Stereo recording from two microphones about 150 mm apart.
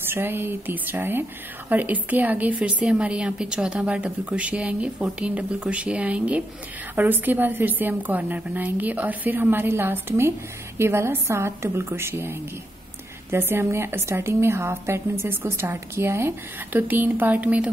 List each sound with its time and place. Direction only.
0.0 s a woman's voice: 15° right (ahead or behind)